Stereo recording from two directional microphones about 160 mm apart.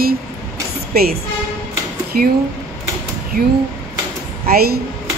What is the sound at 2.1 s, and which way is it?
Speech, 65° right (ahead or behind).